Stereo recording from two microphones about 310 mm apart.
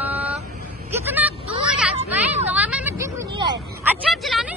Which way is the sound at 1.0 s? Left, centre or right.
Centre.